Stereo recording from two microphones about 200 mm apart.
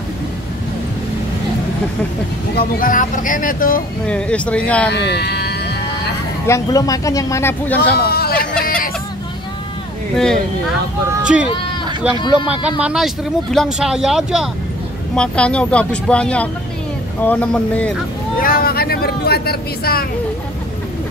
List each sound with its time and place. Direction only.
2.5 s speech: 45° left (ahead or behind)
4.0 s speech: 5° left (ahead or behind)
4.9 s speech: 55° left (ahead or behind)
6.4 s speech: 15° left (ahead or behind)
7.9 s a sound: 50° left (ahead or behind)
10.1 s speech: centre (ahead or behind)
12.8 s speech: centre (ahead or behind)
18.4 s speech: 45° left (ahead or behind)